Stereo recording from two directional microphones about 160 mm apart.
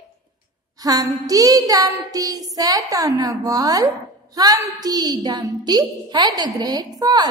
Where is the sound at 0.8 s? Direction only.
20° right (ahead or behind).